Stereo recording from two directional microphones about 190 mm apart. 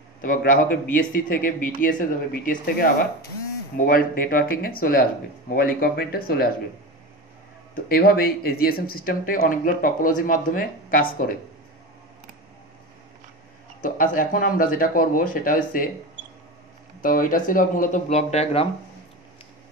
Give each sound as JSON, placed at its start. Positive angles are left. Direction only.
{"t": 0.2, "sound": "speech", "side_deg": 45}
{"t": 7.9, "sound": "speech", "side_deg": 50}
{"t": 13.8, "sound": "speech", "side_deg": 45}
{"t": 17.0, "sound": "speech", "side_deg": 45}